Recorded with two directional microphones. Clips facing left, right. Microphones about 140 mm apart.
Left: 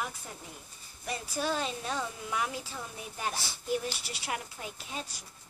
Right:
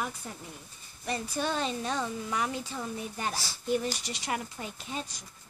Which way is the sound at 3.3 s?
20° left (ahead or behind).